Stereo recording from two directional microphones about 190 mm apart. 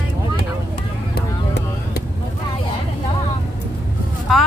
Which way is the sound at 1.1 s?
60° left (ahead or behind).